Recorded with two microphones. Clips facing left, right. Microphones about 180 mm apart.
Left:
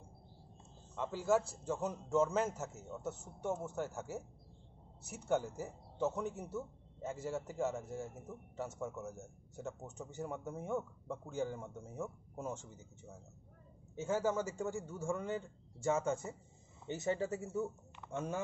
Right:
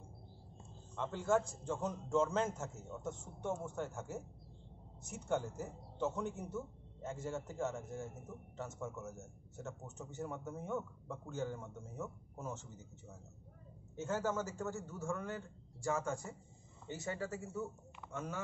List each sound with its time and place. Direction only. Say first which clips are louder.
0.9 s a man's voice: left 1 dB; 5° left (ahead or behind)
13.9 s a man's voice: left 3 dB; 10° left (ahead or behind); by 18.4 s 30° left (ahead or behind)